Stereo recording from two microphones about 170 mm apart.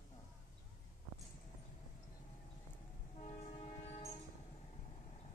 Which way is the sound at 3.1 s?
45° left (ahead or behind).